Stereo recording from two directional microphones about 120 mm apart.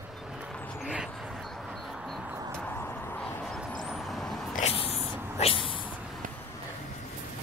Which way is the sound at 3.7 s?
Centre (ahead or behind).